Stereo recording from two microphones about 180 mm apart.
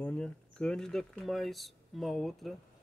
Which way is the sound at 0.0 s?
5° left (ahead or behind).